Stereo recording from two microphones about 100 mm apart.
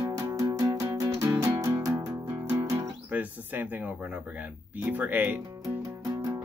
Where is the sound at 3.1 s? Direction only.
15° right (ahead or behind).